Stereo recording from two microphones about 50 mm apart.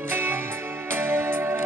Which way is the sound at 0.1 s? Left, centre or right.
Right.